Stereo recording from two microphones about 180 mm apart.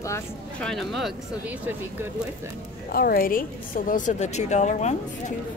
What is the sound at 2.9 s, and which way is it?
A woman's voice, 55° left (ahead or behind).